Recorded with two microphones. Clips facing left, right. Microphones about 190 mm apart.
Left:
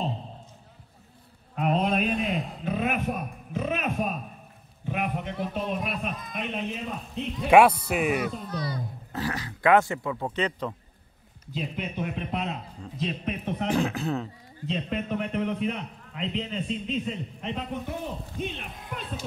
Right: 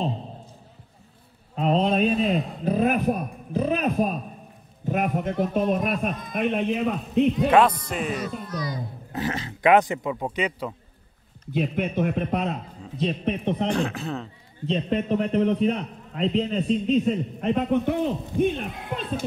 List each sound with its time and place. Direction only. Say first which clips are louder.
1.5 s mantra: right 3 dB; 30° right (ahead or behind)
2.1 s speech: right 5 dB; centre (ahead or behind)
2.6 s a man's voice: right 7 dB; 35° right (ahead or behind); by 6.9 s 55° right (ahead or behind)
7.4 s speech: left 1 dB; 10° left (ahead or behind)
8.2 s a child's voice: even; 60° left (ahead or behind)
9.1 s speech: right 3 dB; 20° right (ahead or behind)
11.5 s a man's voice: right 8 dB; 55° right (ahead or behind)
13.0 s a man's voice: right 6 dB; 30° right (ahead or behind)
13.7 s speech: even; centre (ahead or behind)
14.7 s a man's voice: right 6 dB; 35° right (ahead or behind); by 19.2 s 70° right (ahead or behind)